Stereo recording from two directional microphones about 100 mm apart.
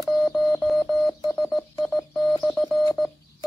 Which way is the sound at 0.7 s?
Centre (ahead or behind).